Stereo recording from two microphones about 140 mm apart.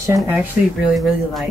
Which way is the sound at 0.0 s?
15° right (ahead or behind).